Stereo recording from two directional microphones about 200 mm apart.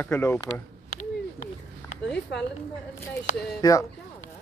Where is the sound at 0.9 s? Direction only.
90° left.